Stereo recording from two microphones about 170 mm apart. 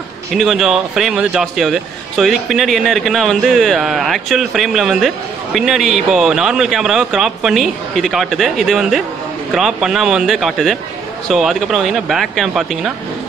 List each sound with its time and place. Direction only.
0.4 s a man's voice: centre (ahead or behind)